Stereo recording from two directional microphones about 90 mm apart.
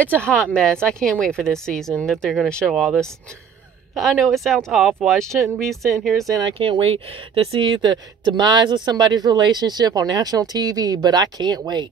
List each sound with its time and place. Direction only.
0.3 s speech: 10° left (ahead or behind)
2.7 s speech: 5° right (ahead or behind)
6.4 s speech: 75° right (ahead or behind); by 11.9 s 50° right (ahead or behind)